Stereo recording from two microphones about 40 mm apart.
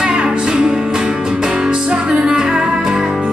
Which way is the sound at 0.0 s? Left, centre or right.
Right.